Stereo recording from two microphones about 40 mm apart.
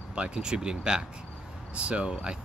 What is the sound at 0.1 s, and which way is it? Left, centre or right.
Speech, right.